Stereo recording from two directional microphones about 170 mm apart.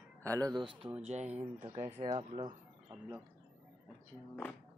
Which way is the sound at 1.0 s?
40° right (ahead or behind).